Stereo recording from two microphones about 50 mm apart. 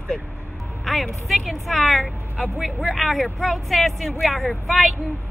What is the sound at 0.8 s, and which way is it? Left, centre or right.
Speech, centre.